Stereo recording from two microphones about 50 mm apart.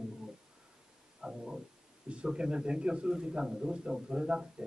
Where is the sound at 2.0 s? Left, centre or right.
Right.